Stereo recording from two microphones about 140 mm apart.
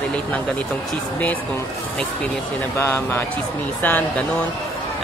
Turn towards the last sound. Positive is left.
turn(degrees=10)  # may be behind; listen again after turning